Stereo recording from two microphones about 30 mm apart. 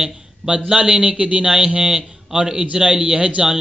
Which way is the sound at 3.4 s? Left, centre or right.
Centre.